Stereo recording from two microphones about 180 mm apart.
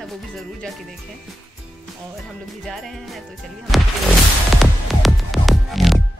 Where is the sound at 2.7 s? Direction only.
Centre (ahead or behind).